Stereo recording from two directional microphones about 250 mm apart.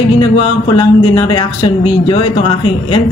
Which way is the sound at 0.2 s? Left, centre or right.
Centre.